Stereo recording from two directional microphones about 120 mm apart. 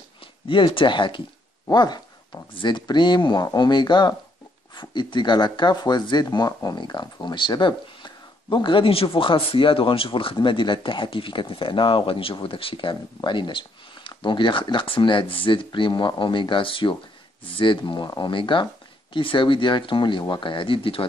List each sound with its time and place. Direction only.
0.5 s speech: 45° left (ahead or behind)